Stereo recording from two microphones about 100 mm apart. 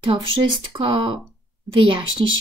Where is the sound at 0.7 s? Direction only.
50° right (ahead or behind).